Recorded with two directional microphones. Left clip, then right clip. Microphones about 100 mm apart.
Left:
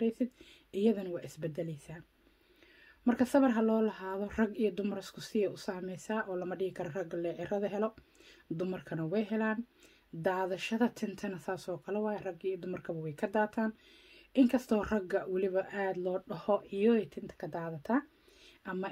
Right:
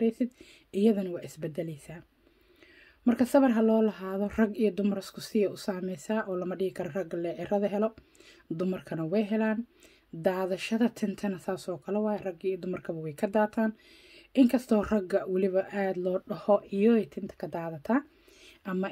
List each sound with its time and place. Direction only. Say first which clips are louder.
0.0 s a woman's voice: right 5 dB; 30° right (ahead or behind)
3.1 s a woman's voice: right 4 dB; 30° right (ahead or behind)